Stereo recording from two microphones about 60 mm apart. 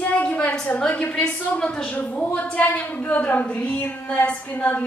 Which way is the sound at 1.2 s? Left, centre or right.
Centre.